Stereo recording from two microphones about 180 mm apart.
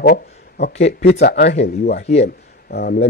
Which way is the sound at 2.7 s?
55° left (ahead or behind).